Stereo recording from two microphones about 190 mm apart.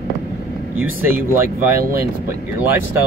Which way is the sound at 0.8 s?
10° right (ahead or behind).